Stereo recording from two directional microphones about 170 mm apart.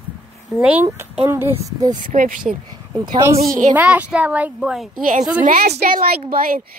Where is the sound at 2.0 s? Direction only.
50° right (ahead or behind).